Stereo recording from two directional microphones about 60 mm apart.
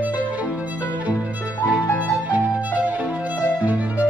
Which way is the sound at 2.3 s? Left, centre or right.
Right.